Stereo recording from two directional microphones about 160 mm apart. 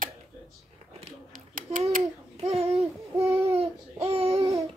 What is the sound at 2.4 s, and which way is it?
Babbling, 40° right (ahead or behind).